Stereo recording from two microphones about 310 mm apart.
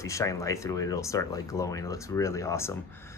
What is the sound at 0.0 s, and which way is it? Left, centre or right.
Speech, centre.